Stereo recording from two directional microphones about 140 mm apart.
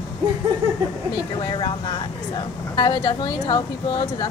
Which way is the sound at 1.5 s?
35° left (ahead or behind).